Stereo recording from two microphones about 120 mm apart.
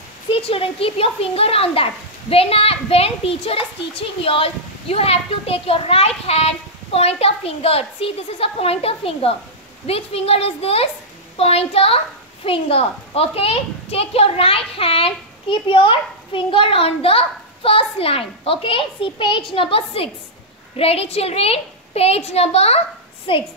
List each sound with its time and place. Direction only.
0.3 s a child's voice: 50° left (ahead or behind)
23.3 s a child's voice: 45° left (ahead or behind)